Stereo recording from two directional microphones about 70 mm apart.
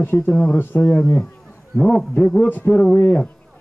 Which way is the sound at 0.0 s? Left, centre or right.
Left.